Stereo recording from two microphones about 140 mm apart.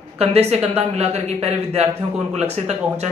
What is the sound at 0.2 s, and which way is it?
A man's voice, 50° right (ahead or behind).